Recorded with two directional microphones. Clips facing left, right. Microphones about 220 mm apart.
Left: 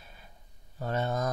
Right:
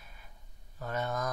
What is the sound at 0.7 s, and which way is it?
Speech, 30° left (ahead or behind).